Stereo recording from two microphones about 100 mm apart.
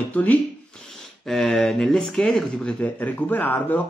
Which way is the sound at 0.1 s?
15° left (ahead or behind).